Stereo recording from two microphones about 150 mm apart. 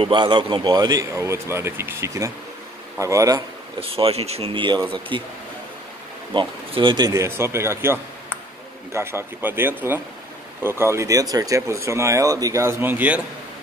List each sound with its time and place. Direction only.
0.0 s speech: 35° right (ahead or behind)
3.8 s speech: 40° right (ahead or behind)
6.3 s speech: 35° right (ahead or behind)
7.1 s speech: 20° right (ahead or behind)